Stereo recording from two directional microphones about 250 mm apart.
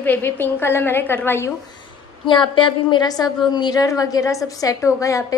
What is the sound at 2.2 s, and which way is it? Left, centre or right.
A woman's voice, centre.